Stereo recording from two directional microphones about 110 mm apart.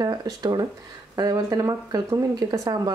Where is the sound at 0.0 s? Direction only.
35° right (ahead or behind).